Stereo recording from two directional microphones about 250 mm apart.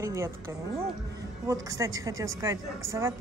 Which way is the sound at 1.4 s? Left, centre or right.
Centre.